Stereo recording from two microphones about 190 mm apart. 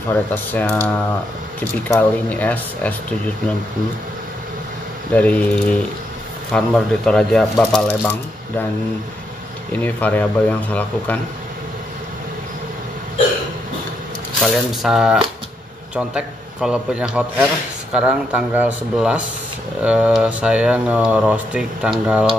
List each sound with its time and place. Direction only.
0.1 s speech: 10° left (ahead or behind)
5.1 s speech: 5° left (ahead or behind)
9.7 s speech: 10° left (ahead or behind)
14.4 s speech: centre (ahead or behind)